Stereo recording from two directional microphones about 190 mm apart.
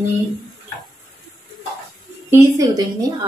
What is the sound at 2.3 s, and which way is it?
Speech, 15° right (ahead or behind).